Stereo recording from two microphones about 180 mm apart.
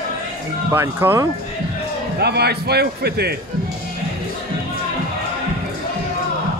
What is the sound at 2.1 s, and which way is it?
A man's voice, 65° right (ahead or behind).